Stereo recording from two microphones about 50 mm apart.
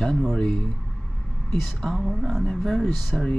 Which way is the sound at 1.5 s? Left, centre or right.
Centre.